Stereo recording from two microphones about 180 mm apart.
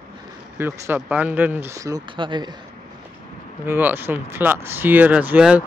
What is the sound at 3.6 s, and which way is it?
Speech, 10° right (ahead or behind).